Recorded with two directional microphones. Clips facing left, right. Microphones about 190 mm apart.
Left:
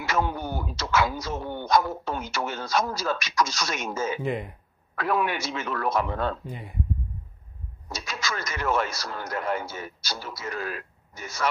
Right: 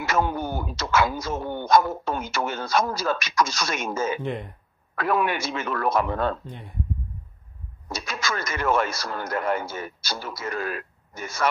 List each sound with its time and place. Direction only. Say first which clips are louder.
0.0 s speech: right 3 dB; 50° right (ahead or behind)
4.2 s speech: left 1 dB; 5° left (ahead or behind)
4.9 s speech: right 2 dB; 55° right (ahead or behind)
6.4 s speech: left 2 dB; 10° left (ahead or behind)
7.9 s speech: right 3 dB; 55° right (ahead or behind)